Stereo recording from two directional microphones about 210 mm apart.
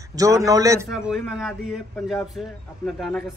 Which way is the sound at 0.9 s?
Centre (ahead or behind).